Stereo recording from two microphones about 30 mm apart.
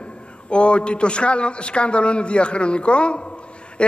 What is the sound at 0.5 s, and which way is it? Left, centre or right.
A man's voice, left.